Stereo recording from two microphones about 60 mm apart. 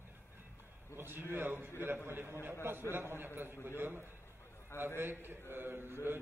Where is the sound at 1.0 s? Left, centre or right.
Right.